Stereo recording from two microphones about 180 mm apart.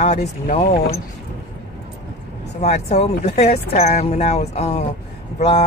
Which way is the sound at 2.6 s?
35° left (ahead or behind).